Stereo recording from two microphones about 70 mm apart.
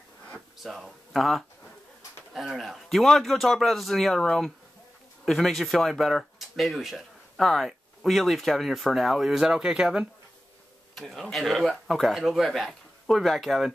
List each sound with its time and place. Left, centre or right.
0.6 s speech: centre